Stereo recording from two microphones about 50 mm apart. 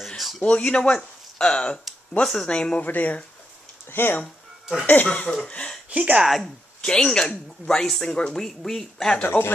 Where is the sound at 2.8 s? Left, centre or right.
Left.